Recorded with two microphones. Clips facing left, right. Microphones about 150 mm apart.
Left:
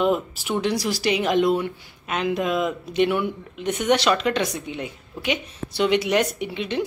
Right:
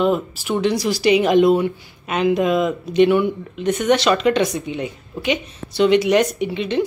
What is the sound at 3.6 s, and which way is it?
Speech, 15° left (ahead or behind).